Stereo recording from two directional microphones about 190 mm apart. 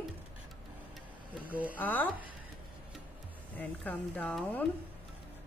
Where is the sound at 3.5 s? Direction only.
10° left (ahead or behind).